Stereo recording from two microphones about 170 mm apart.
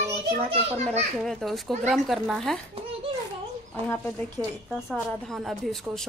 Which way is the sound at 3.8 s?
10° left (ahead or behind).